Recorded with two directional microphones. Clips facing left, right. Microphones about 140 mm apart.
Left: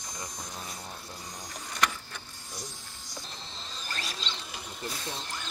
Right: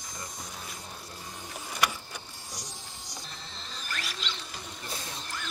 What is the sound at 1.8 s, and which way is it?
Vehicle, 10° right (ahead or behind).